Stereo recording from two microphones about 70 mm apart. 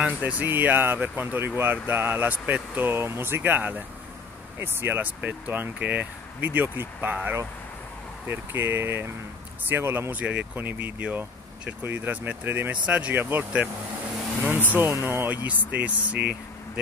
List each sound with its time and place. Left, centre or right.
0.0 s speech: right
8.3 s speech: right
10.1 s speech: right
12.8 s speech: centre
13.2 s speech: right
14.8 s speech: right
15.2 s speech: right